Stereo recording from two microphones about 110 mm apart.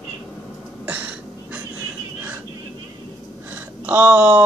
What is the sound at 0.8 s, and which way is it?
Throat clearing, 15° right (ahead or behind).